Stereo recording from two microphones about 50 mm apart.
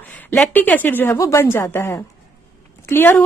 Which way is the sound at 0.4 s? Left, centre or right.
Left.